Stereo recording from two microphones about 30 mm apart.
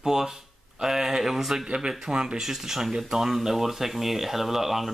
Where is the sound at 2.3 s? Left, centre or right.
Centre.